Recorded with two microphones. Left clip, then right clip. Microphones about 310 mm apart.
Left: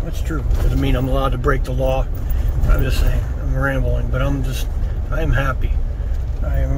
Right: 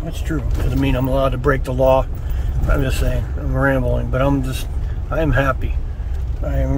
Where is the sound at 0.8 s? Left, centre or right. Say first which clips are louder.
Right 3 dB; centre.